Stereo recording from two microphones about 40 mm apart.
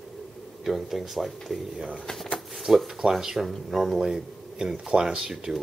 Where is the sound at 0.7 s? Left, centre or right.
Centre.